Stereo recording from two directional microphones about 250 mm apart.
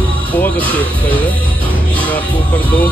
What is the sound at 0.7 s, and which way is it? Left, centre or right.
Speech, right.